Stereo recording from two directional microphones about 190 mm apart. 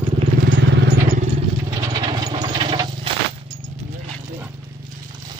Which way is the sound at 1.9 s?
25° right (ahead or behind).